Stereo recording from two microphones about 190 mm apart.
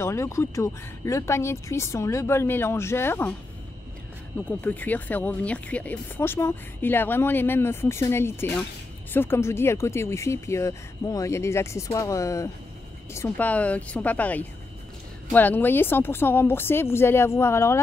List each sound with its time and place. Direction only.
0.0 s speech: 15° left (ahead or behind)
4.5 s speech: 10° left (ahead or behind)